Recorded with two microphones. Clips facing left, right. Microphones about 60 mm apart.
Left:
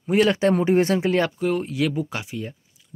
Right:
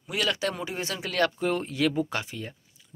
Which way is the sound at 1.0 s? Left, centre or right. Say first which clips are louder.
Left 5 dB; left.